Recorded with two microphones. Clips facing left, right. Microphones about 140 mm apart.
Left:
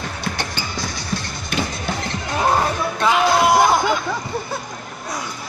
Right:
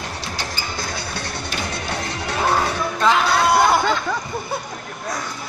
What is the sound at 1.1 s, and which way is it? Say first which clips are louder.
Music: left 3 dB; 65° right (ahead or behind).